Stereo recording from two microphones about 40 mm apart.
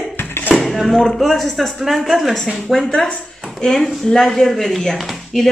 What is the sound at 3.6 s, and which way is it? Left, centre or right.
Speech, centre.